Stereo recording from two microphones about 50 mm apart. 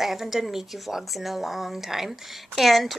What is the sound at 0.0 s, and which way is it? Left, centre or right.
A woman's voice, centre.